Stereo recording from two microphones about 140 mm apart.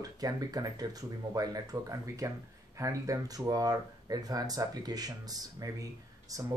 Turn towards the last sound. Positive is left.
turn(degrees=-25)  # may be behind; listen again after turning